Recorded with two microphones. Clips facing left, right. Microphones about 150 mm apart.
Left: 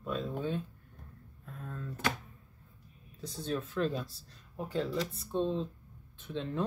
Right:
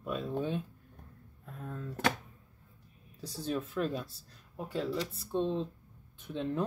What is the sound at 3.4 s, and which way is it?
Speech, 5° right (ahead or behind).